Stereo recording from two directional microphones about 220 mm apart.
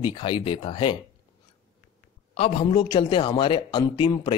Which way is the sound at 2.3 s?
25° left (ahead or behind).